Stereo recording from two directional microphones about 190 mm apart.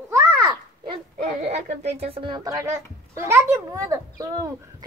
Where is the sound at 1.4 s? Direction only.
35° right (ahead or behind); by 4.9 s 15° right (ahead or behind).